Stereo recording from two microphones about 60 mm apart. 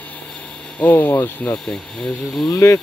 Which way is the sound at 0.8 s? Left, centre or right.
Left.